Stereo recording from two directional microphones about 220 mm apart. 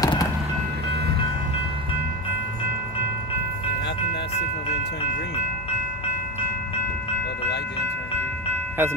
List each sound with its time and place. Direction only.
0.0 s music: 15° left (ahead or behind)